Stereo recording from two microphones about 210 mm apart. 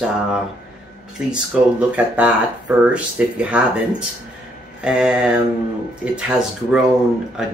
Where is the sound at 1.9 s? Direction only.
5° right (ahead or behind).